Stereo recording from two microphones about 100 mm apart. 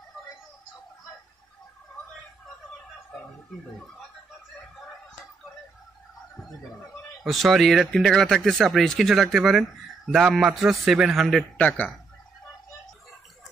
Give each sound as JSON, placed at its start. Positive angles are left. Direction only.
{"t": 7.2, "sound": "speech", "side_deg": 0}
{"t": 11.5, "sound": "speech", "side_deg": 15}